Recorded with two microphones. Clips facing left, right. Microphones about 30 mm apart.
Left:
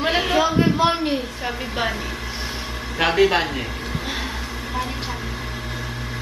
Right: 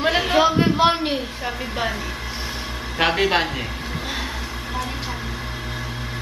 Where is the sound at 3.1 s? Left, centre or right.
Centre.